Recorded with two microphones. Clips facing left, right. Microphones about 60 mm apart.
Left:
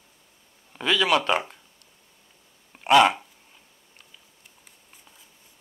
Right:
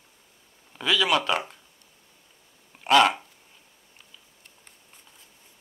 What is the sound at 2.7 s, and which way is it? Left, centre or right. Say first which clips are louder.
Speech: left 2 dB; centre.